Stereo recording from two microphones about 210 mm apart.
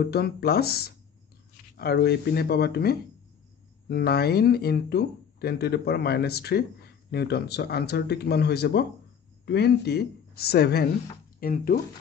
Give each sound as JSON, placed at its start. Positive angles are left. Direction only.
{"t": 0.1, "sound": "speech", "side_deg": 50}